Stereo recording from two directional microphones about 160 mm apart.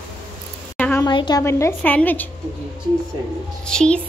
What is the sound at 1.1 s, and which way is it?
A woman's voice, 30° left (ahead or behind).